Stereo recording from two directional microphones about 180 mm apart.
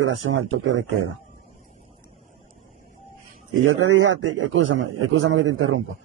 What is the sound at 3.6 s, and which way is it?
A man's voice, 90° right.